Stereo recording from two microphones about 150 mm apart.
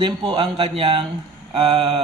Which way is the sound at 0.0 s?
35° right (ahead or behind).